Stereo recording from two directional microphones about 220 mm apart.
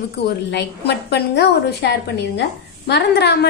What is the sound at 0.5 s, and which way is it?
A woman's voice, 50° left (ahead or behind).